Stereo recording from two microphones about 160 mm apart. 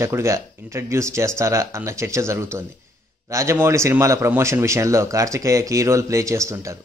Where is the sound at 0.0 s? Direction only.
15° right (ahead or behind).